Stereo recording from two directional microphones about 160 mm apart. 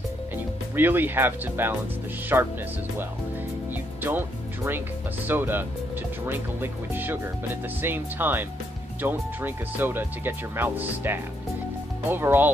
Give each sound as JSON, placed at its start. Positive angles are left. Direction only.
{"t": 0.7, "sound": "speech", "side_deg": -10}
{"t": 3.7, "sound": "speech", "side_deg": -10}